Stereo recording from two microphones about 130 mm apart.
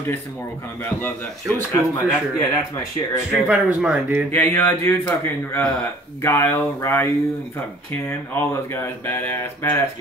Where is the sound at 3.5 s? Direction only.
10° right (ahead or behind).